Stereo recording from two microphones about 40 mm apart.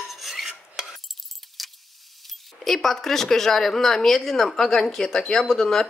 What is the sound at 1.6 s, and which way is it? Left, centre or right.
Keys jangling, centre.